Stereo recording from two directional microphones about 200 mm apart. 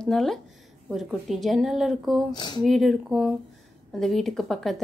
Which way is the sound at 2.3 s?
20° left (ahead or behind).